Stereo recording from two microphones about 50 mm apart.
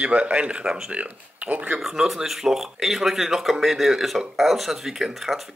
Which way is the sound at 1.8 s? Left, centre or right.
Centre.